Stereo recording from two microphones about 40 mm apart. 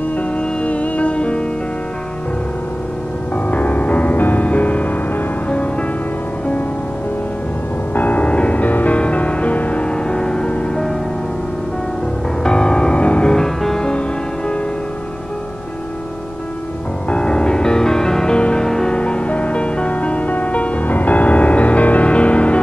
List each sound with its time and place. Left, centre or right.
0.4 s music: left
3.4 s music: left
7.9 s a sound: left
8.3 s music: left
12.4 s music: centre
13.3 s music: centre
17.1 s music: centre
18.9 s music: left